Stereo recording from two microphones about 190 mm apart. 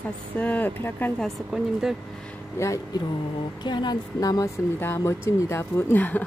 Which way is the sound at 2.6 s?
15° left (ahead or behind).